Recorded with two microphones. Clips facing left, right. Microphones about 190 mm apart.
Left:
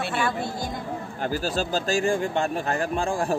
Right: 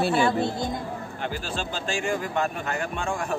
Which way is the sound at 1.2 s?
40° left (ahead or behind).